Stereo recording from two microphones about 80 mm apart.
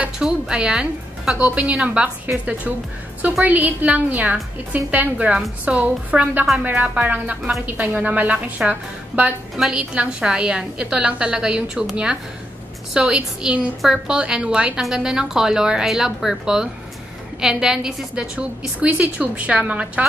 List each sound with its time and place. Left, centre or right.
0.2 s a woman's voice: centre